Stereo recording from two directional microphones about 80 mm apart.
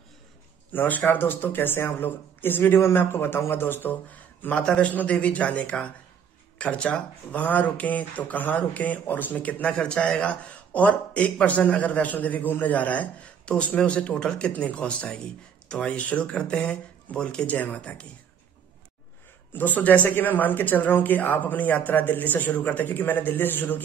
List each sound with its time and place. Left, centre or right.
0.7 s speech: left
19.5 s speech: left